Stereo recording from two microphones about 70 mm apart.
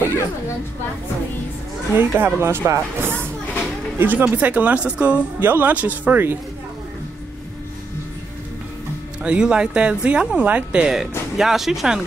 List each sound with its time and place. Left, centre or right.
2.0 s speech: right
9.2 s speech: centre